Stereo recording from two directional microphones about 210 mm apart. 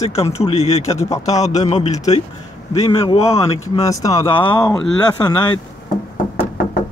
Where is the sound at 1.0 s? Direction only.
15° left (ahead or behind).